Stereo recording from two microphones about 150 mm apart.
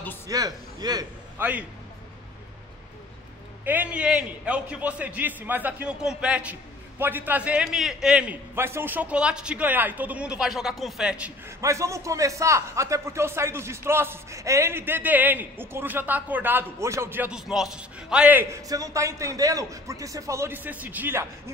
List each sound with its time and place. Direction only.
0.3 s a man's voice: 25° right (ahead or behind)
1.4 s speech: 10° right (ahead or behind)
3.6 s speech: 10° right (ahead or behind)
11.6 s speech: 20° right (ahead or behind)